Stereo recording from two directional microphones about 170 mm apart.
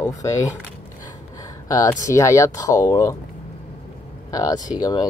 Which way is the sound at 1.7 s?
20° left (ahead or behind).